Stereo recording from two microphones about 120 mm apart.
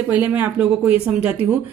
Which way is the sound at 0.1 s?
15° right (ahead or behind).